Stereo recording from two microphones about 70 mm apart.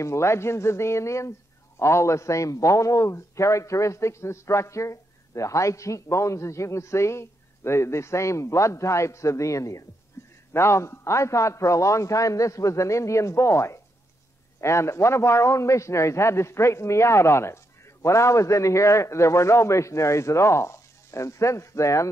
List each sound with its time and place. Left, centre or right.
0.0 s a man's voice: left
10.2 s a sound: left
10.5 s a man's voice: left